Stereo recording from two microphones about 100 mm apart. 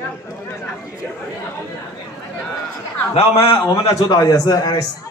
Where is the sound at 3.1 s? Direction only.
80° left.